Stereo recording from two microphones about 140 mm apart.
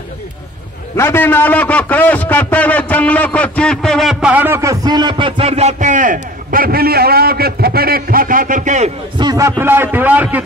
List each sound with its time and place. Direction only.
0.9 s a man's voice: 15° left (ahead or behind); by 8.9 s 60° right (ahead or behind)
9.2 s a man's voice: 25° right (ahead or behind)